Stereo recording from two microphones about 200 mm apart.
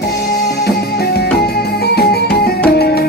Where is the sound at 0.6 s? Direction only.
55° left (ahead or behind).